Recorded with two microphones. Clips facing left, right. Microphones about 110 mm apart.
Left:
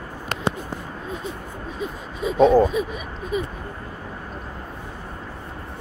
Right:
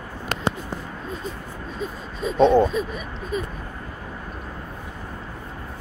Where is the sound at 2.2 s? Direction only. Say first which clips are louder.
Left 1 dB; 5° left (ahead or behind).